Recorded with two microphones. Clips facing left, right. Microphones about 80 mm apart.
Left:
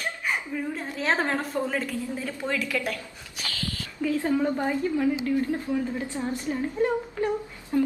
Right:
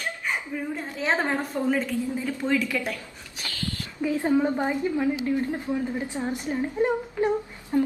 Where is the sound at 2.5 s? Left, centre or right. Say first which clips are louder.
Right 2 dB; centre.